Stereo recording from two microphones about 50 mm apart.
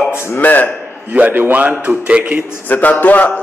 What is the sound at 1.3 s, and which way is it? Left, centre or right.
A man's voice, right.